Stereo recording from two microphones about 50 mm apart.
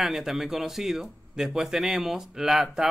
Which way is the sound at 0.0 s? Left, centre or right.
Centre.